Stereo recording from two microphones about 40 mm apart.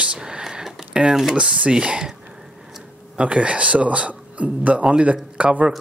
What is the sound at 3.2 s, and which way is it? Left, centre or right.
A man's voice, right.